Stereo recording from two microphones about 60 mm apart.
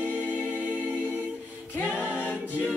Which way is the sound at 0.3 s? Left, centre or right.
Left.